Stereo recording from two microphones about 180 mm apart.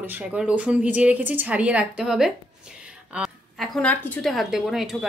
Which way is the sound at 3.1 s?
5° right (ahead or behind).